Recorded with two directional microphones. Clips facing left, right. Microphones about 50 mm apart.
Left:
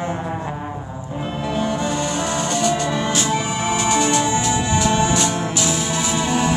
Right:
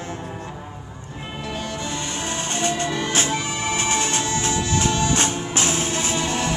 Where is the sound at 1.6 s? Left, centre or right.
Left.